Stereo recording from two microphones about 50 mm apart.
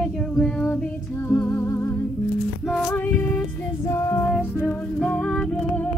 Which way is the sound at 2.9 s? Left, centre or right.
Left.